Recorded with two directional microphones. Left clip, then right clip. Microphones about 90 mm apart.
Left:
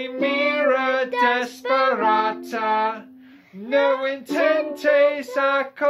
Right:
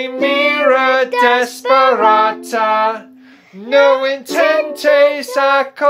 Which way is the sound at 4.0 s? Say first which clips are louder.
Right 7 dB; 25° right (ahead or behind).